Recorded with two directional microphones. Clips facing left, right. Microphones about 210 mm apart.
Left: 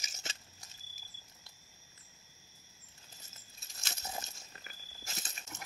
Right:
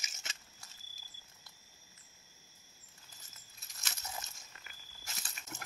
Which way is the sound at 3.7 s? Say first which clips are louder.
Left 3 dB; 30° left (ahead or behind).